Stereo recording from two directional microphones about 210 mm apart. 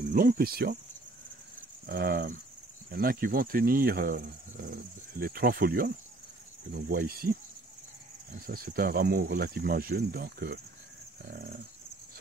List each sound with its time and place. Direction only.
0.0 s speech: 40° right (ahead or behind)
1.9 s speech: 45° right (ahead or behind)
8.5 s speech: 45° right (ahead or behind)